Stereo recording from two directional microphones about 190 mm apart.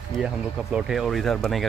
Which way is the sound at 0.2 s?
5° right (ahead or behind).